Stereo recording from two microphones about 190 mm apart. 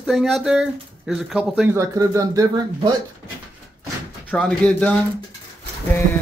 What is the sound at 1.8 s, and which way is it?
Speech, 15° right (ahead or behind).